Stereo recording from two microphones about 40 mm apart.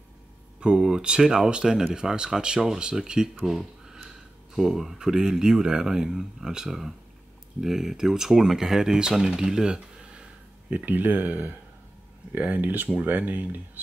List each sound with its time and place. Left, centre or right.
0.6 s speech: right
3.4 s a sound: centre
4.6 s speech: centre
10.9 s speech: right